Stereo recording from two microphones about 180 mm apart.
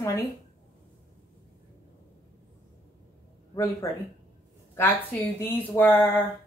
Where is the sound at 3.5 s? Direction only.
15° left (ahead or behind).